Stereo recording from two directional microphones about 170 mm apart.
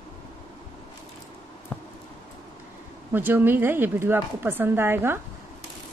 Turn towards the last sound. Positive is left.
turn(degrees=-15)  # may be behind; listen again after turning